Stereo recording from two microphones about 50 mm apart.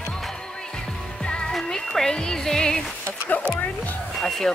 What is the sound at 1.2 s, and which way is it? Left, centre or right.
Music, centre.